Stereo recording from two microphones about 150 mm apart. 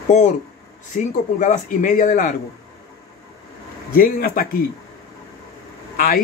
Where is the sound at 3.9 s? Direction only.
75° left (ahead or behind).